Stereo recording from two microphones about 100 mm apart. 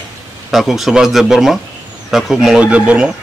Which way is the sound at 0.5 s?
Centre (ahead or behind).